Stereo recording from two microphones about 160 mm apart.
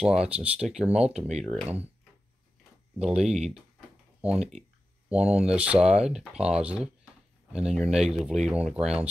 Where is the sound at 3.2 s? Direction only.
45° right (ahead or behind).